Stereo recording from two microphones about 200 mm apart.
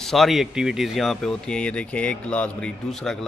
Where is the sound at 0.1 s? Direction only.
Centre (ahead or behind).